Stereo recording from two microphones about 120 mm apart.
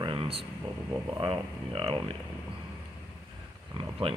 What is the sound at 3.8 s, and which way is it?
Speech, 45° right (ahead or behind).